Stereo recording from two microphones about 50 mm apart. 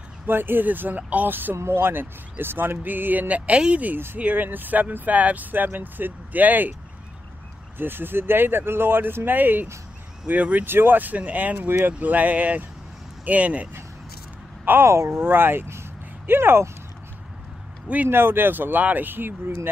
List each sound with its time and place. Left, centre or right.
0.3 s speech: right
1.6 s speech: right
4.2 s speech: right
7.7 s speech: right
10.6 s speech: right
11.5 s speech: right
14.6 s a sound: right
14.9 s speech: right
17.8 s speech: right
18.1 s speech: right